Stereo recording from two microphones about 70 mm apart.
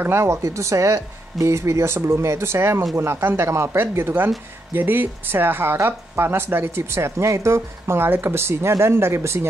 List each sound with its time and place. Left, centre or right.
0.0 s speech: right